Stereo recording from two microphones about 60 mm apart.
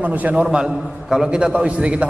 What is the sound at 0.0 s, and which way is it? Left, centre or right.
A man's voice, right.